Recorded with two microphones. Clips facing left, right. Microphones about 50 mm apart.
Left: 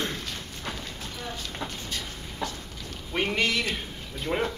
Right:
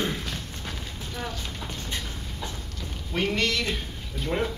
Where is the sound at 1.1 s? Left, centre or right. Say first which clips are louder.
Right 4 dB; right.